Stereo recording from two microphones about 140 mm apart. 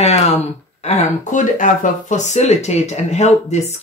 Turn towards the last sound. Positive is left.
turn(degrees=55)  # may be behind; listen again after turning